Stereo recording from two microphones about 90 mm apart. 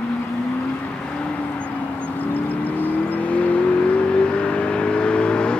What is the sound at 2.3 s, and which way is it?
Vehicle, 20° left (ahead or behind).